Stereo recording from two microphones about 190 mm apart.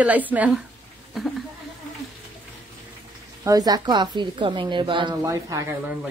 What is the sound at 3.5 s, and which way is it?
A woman's voice, 20° right (ahead or behind).